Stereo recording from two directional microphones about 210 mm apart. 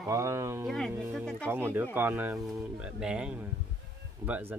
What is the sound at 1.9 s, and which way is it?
Speech, 10° right (ahead or behind).